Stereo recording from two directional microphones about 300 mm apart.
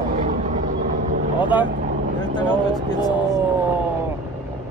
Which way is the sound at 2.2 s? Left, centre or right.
Centre.